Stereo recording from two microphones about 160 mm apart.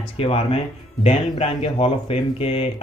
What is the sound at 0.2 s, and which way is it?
Speech, 35° left (ahead or behind).